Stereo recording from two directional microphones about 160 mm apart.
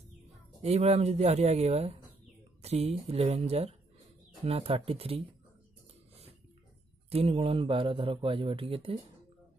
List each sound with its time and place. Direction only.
0.6 s a man's voice: 40° right (ahead or behind)
7.1 s a man's voice: 40° right (ahead or behind)